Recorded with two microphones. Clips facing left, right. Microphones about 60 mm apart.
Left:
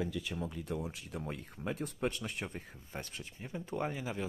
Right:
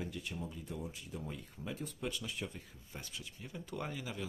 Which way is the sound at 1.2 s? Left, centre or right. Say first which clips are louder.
Left 6 dB; left.